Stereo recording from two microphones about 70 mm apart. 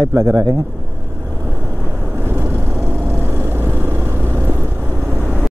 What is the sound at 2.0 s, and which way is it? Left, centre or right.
Vehicle, right.